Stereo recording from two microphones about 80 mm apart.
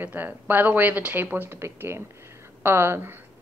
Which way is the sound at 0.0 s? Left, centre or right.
Right.